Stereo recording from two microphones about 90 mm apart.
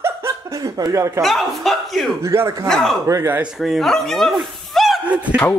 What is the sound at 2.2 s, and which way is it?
Speech, 30° right (ahead or behind).